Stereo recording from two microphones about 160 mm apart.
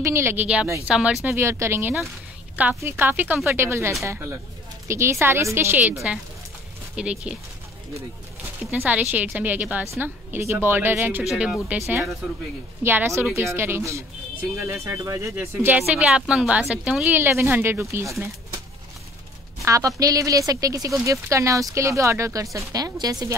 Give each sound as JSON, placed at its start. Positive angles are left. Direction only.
{"t": 0.0, "sound": "speech", "side_deg": -15}
{"t": 8.7, "sound": "speech", "side_deg": -10}
{"t": 12.8, "sound": "speech", "side_deg": -15}
{"t": 19.6, "sound": "a woman's voice", "side_deg": -20}